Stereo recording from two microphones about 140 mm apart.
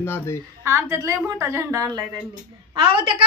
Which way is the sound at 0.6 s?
20° right (ahead or behind).